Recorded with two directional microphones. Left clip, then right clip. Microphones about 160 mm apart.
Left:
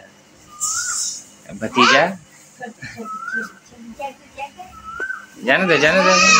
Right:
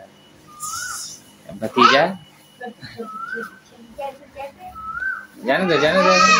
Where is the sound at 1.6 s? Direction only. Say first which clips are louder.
Even; 5° right (ahead or behind).